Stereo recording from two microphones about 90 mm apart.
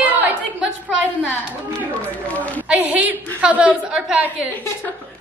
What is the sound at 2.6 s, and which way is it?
A woman's voice, 15° right (ahead or behind).